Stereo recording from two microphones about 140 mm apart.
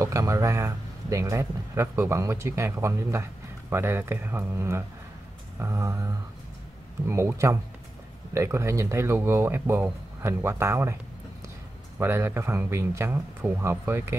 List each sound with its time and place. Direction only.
0.0 s speech: 20° right (ahead or behind)
12.0 s speech: 15° right (ahead or behind)